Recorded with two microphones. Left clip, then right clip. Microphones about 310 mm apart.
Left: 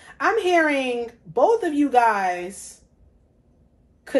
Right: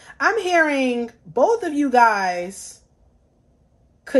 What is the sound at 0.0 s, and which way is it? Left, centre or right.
A woman's voice, right.